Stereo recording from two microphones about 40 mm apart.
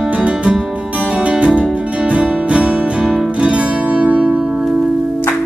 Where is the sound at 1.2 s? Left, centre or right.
Right.